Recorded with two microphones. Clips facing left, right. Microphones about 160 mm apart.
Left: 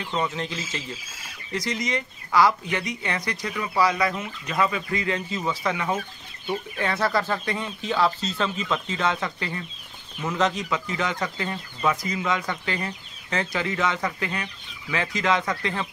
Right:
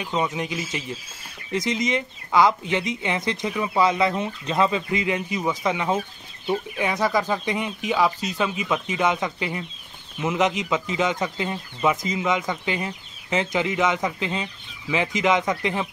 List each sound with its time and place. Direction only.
0.0 s speech: 15° right (ahead or behind)